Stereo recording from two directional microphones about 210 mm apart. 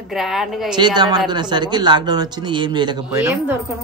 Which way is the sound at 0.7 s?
20° right (ahead or behind).